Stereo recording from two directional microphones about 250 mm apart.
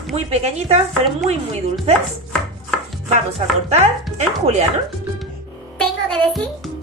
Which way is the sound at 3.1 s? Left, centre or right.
Right.